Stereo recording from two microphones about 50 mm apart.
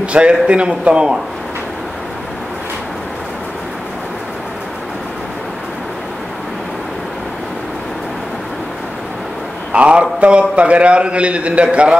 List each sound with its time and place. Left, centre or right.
0.0 s a man's voice: right
9.7 s a man's voice: right